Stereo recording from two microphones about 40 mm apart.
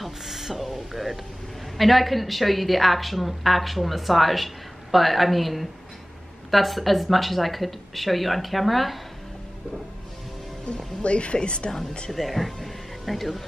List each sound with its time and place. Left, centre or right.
0.0 s a sound: centre
1.8 s a woman's voice: centre
11.0 s speech: left
12.1 s speech: centre